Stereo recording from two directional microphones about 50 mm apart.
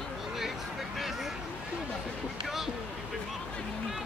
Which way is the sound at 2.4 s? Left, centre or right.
Centre.